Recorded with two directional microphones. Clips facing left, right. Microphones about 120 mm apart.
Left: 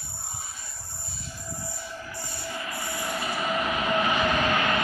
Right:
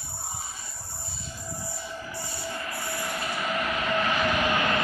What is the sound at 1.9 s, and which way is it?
Music, 5° right (ahead or behind).